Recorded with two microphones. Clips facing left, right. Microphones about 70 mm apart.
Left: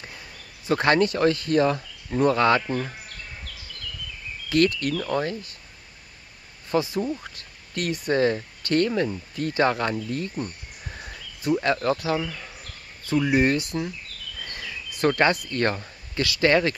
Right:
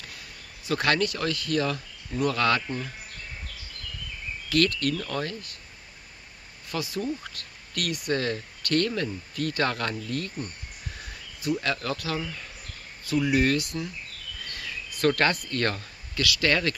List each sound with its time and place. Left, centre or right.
0.7 s speech: left
4.5 s speech: left
6.7 s speech: left
11.4 s speech: left
14.5 s insect: left
15.5 s speech: left